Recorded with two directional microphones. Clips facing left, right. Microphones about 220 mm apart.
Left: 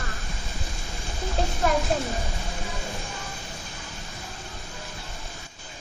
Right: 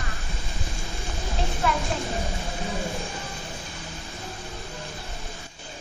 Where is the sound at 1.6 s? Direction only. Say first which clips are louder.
Left 2 dB; 45° left (ahead or behind).